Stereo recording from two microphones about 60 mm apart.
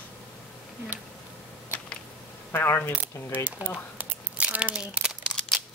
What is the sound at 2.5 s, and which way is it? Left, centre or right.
Speech, left.